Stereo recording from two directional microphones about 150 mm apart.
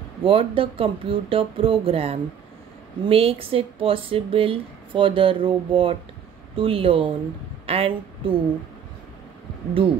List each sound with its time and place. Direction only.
0.2 s a woman's voice: 35° right (ahead or behind)
9.8 s speech: 35° right (ahead or behind)